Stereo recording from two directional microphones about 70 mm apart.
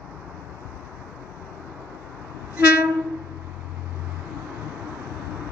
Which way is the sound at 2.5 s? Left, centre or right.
Right.